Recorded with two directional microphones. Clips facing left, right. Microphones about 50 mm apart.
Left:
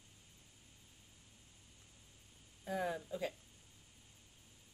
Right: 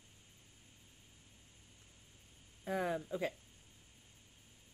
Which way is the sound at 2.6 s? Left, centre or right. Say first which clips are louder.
Right 2 dB; right.